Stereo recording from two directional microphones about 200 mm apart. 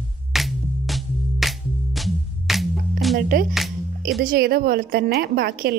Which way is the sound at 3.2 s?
45° right (ahead or behind).